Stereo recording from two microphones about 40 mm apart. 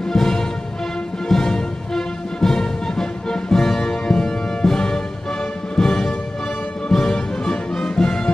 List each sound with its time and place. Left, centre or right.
0.1 s music: centre